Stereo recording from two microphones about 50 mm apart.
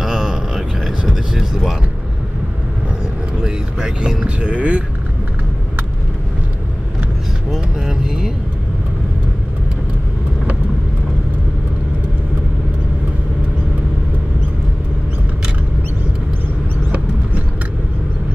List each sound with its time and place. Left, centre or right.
0.0 s vehicle: centre
3.4 s vehicle: centre
7.5 s vehicle: centre